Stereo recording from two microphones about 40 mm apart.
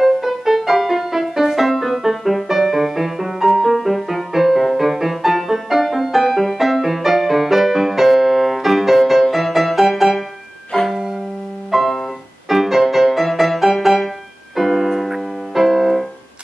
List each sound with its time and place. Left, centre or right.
0.0 s music: centre
10.7 s music: centre
11.7 s music: centre